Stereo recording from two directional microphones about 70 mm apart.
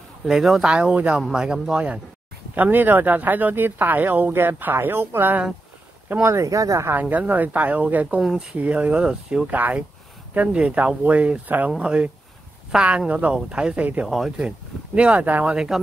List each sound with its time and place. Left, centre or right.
0.2 s speech: centre
0.7 s speech: centre
2.5 s speech: right
6.2 s speech: right
6.9 s speech: right
8.2 s speech: centre
8.5 s speech: right
9.5 s speech: right
14.0 s speech: centre
15.0 s speech: centre
15.5 s speech: centre